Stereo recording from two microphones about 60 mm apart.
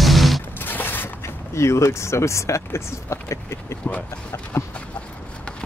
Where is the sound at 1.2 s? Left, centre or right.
Left.